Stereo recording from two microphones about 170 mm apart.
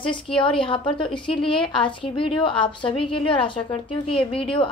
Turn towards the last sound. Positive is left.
turn(degrees=30)  # may be behind; listen again after turning